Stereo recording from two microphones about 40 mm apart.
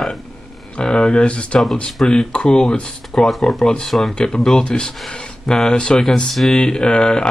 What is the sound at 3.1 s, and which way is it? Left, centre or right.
Speech, left.